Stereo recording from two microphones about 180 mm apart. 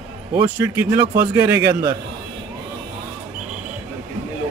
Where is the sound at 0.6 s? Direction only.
15° right (ahead or behind).